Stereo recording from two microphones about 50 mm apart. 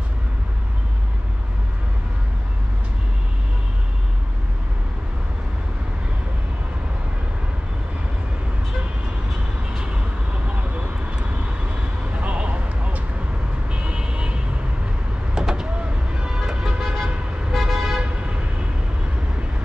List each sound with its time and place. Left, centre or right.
12.2 s a sound: right
13.7 s vehicle: right
15.3 s vehicle: centre
17.5 s vehicle: centre
18.0 s toot: right